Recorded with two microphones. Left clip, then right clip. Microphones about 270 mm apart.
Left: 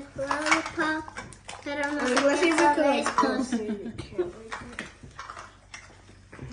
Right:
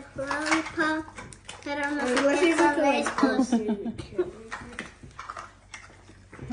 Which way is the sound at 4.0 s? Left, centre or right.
Centre.